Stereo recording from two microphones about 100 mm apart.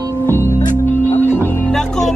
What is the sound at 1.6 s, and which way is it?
Music, 5° left (ahead or behind).